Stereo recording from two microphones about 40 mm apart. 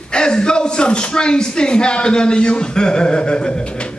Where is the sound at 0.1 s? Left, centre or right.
Left.